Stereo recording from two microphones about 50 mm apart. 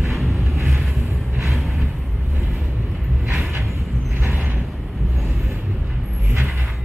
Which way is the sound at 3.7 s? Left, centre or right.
Right.